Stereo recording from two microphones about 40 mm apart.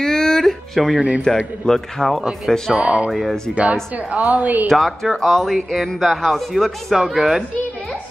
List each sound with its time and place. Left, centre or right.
0.0 s music: centre
1.3 s speech: centre
2.8 s a woman's voice: right
3.1 s speech: centre
3.9 s a woman's voice: right
4.6 s speech: centre